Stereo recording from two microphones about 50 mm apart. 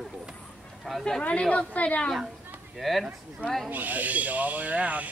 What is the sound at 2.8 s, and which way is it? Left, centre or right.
Speech, centre.